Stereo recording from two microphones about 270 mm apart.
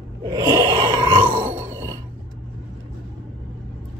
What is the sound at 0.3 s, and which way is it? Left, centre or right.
Groan, centre.